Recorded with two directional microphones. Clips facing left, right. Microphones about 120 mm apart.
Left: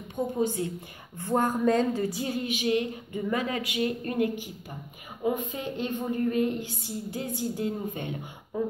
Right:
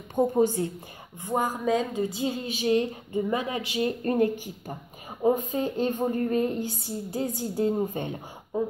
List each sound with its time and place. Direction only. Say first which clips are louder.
0.1 s a woman's voice: right 6 dB; 40° right (ahead or behind)
1.1 s a woman's voice: left 2 dB; 10° right (ahead or behind)
2.0 s a woman's voice: right 1 dB; 20° right (ahead or behind)
8.5 s speech: right 2 dB; 20° right (ahead or behind)